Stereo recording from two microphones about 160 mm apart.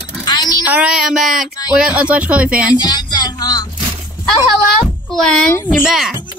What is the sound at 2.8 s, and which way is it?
Speech, 25° left (ahead or behind).